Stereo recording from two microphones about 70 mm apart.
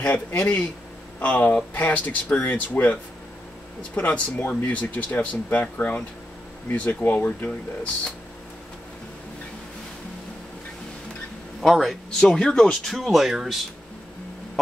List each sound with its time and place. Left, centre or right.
0.0 s speech: left
11.6 s speech: centre
12.9 s speech: centre